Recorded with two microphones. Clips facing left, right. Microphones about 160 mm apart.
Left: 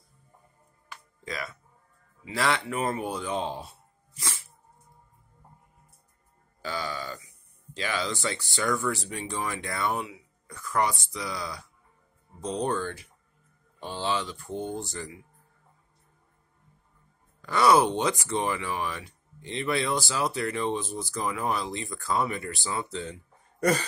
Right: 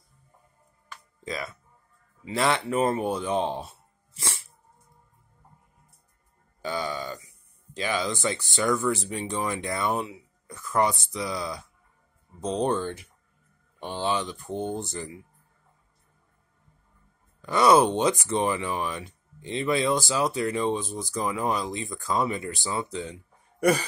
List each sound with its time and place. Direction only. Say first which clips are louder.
1.2 s speech: right 3 dB; 25° right (ahead or behind)
6.6 s speech: right 3 dB; 20° right (ahead or behind)
17.4 s speech: right 2 dB; 20° right (ahead or behind)